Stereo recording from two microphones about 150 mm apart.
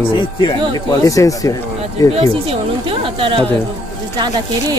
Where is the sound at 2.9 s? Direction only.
35° right (ahead or behind).